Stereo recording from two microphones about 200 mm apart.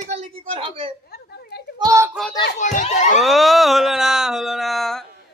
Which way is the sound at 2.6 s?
40° left (ahead or behind).